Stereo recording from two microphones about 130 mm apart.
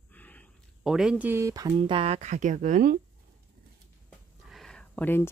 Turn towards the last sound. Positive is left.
turn(degrees=15)  # may be behind; listen again after turning